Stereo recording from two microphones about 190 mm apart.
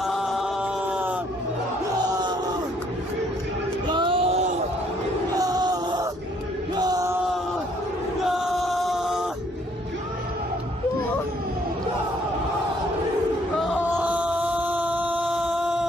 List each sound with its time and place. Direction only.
0.0 s chant: centre (ahead or behind)
3.8 s music: 25° right (ahead or behind)
5.4 s a sound: 20° right (ahead or behind)
6.7 s chant: 20° right (ahead or behind)
8.3 s music: centre (ahead or behind)
13.8 s chant: 10° right (ahead or behind)